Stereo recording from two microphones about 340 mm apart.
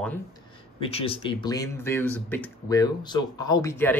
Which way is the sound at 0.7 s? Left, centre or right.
Centre.